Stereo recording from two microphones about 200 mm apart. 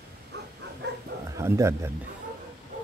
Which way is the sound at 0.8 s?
55° right (ahead or behind).